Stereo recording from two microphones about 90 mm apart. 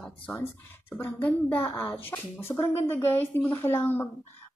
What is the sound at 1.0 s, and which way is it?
Speech, 20° left (ahead or behind).